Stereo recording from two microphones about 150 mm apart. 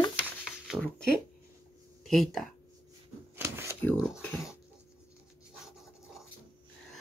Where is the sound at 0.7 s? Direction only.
5° left (ahead or behind).